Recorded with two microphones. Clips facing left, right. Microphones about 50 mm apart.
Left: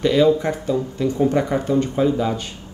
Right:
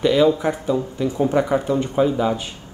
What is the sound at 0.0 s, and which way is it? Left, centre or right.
Speech, centre.